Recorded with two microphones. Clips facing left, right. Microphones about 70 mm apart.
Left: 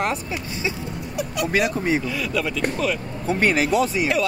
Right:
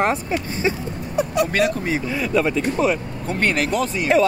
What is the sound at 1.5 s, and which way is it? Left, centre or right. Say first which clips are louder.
Speech: right 1 dB; centre.